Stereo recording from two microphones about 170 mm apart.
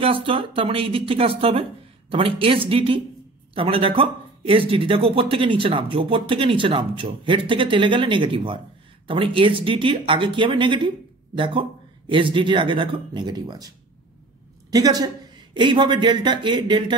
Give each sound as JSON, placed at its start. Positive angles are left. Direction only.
{"t": 0.0, "sound": "speech", "side_deg": -30}
{"t": 14.7, "sound": "speech", "side_deg": -20}